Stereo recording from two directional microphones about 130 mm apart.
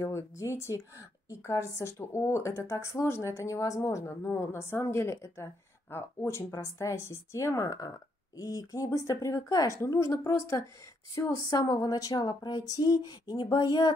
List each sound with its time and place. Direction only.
0.0 s a woman's voice: 20° left (ahead or behind)